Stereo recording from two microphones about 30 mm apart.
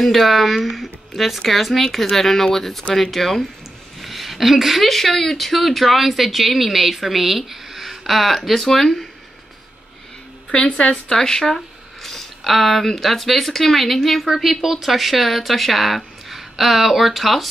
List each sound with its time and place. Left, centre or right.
0.0 s speech: centre
10.5 s speech: left
11.5 s a sound: centre
12.8 s speech: centre
14.2 s a woman's voice: centre